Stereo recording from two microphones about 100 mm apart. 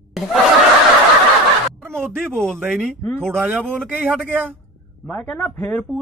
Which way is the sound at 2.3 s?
5° left (ahead or behind).